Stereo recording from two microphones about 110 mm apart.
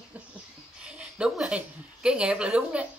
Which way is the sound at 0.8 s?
10° right (ahead or behind).